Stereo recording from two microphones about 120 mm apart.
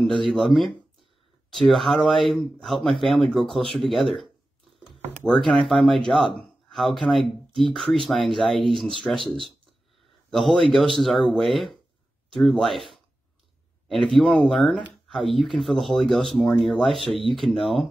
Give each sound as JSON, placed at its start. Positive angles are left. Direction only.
{"t": 0.2, "sound": "speech", "side_deg": 0}
{"t": 5.3, "sound": "speech", "side_deg": 0}